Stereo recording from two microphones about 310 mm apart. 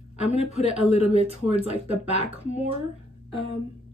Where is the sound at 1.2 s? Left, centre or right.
Centre.